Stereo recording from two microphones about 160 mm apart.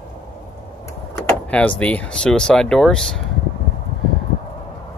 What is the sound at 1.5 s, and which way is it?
Speech, 10° left (ahead or behind).